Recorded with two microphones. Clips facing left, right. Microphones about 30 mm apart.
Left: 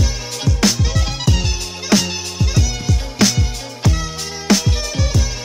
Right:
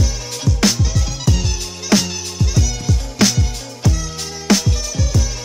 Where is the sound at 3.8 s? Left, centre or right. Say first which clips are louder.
Left 1 dB; left.